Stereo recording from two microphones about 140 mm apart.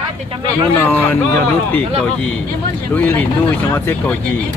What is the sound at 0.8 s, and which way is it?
Speech, 15° left (ahead or behind).